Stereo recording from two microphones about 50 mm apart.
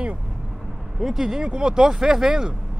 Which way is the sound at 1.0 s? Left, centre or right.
Centre.